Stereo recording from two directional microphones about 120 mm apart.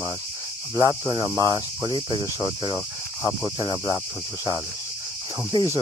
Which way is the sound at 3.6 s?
35° right (ahead or behind).